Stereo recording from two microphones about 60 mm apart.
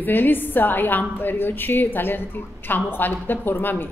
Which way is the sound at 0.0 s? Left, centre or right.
Left.